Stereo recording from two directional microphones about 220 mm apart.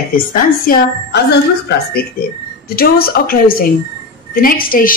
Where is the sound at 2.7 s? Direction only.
45° left (ahead or behind).